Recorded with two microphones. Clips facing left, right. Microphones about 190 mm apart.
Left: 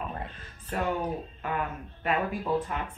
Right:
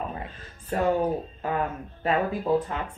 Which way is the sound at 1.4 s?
35° right (ahead or behind).